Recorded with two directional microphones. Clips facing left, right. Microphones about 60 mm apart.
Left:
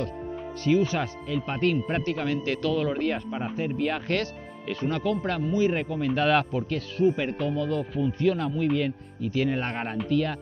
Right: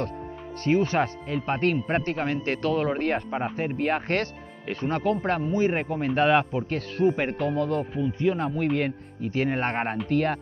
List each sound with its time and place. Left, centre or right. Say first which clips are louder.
0.7 s speech: right 1 dB; right
7.0 s speech: right 1 dB; right
7.9 s speech: even; right
8.5 s speech: even; right